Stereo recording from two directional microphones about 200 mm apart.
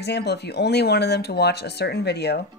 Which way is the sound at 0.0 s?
55° left (ahead or behind).